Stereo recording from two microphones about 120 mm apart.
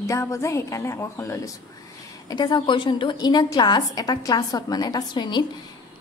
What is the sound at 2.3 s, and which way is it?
A woman's voice, 35° left (ahead or behind).